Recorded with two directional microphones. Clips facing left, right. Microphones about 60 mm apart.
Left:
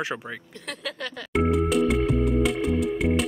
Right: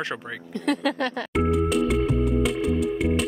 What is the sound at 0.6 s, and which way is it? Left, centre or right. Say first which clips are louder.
Speech: right 11 dB; right.